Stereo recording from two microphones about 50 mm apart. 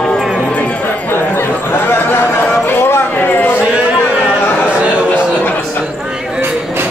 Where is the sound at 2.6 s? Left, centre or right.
Left.